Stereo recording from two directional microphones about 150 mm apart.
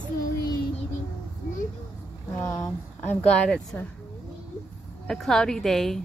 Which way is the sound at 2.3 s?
15° left (ahead or behind).